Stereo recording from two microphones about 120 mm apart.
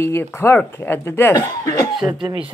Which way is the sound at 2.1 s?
45° right (ahead or behind).